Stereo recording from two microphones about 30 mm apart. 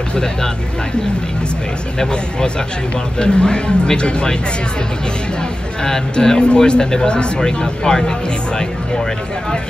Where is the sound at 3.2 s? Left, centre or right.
Left.